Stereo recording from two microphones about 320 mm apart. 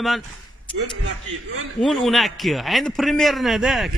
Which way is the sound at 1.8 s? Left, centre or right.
Centre.